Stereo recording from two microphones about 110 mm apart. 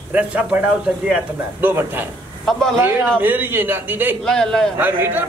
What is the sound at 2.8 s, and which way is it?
A man's voice, 20° right (ahead or behind).